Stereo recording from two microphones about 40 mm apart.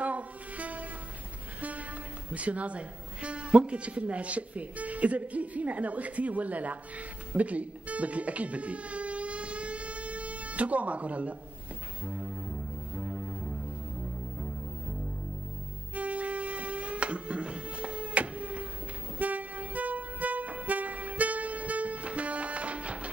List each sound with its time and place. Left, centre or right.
0.0 s music: right
2.3 s a man's voice: right
7.3 s music: right
12.9 s music: right
15.9 s music: right
19.1 s vehicle: right